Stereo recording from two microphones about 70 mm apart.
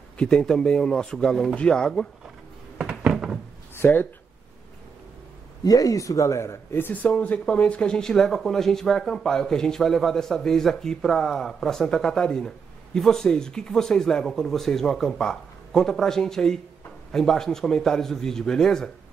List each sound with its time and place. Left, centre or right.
0.2 s speech: centre
2.8 s door: centre
3.1 s a sound: centre
3.7 s speech: left
5.6 s speech: left
6.9 s speech: left